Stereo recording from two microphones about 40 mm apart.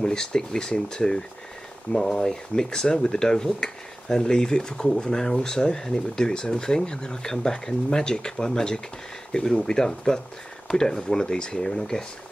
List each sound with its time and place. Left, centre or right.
0.0 s speech: centre